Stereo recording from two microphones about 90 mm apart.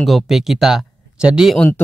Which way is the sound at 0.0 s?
Centre (ahead or behind).